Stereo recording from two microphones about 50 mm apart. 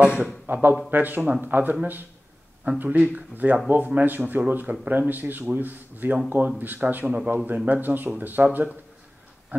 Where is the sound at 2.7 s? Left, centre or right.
Right.